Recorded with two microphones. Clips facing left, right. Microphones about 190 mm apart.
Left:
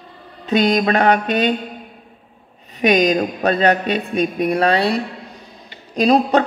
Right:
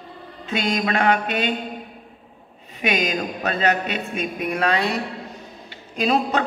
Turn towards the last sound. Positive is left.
turn(degrees=35)  # may be behind; listen again after turning